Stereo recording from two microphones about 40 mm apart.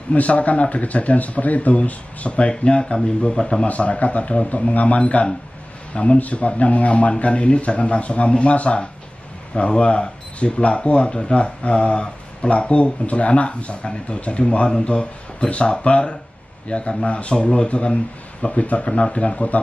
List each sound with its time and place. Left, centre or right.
0.1 s speech: left
2.5 s speech: left
3.3 s speech: centre
3.6 s speech: left